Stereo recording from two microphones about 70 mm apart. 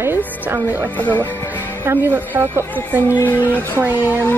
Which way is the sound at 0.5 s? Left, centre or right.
Right.